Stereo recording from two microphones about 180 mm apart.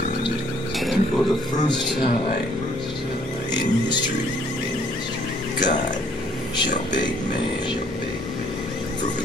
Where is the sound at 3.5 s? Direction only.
25° left (ahead or behind).